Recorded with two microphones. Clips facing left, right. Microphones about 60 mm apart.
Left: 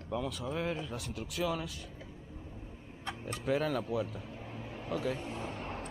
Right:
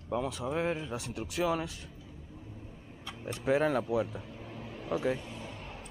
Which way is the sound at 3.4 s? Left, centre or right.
Centre.